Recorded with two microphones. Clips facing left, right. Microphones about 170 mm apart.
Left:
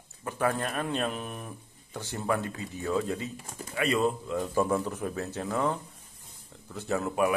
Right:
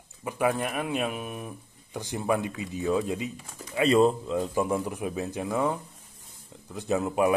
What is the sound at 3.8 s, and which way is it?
Speech, 30° right (ahead or behind).